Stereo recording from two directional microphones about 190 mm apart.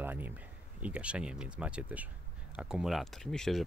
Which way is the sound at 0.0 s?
10° right (ahead or behind).